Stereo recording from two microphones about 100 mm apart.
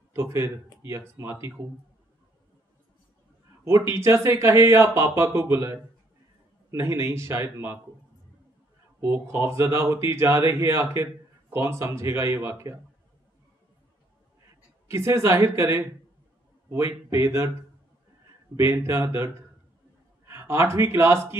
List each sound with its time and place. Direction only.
0.1 s speech: 25° right (ahead or behind)
3.6 s speech: 25° right (ahead or behind)
9.0 s speech: 25° right (ahead or behind)
14.9 s speech: 30° right (ahead or behind)
18.6 s speech: 25° right (ahead or behind)